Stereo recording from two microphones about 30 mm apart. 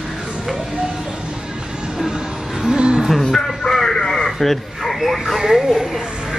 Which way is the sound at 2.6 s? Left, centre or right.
Right.